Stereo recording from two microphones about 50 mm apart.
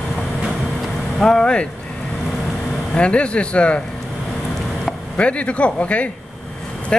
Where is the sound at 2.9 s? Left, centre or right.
Left.